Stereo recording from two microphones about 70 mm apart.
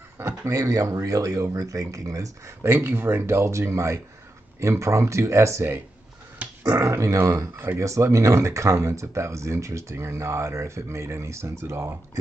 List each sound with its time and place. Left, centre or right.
0.5 s speech: right
2.6 s speech: right
6.4 s a sound: right
6.8 s speech: right